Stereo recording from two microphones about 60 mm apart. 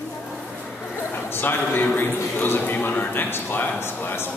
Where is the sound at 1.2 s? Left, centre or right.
Left.